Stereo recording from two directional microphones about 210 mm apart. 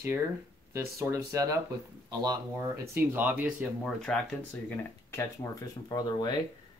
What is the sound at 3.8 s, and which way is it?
Speech, 5° left (ahead or behind).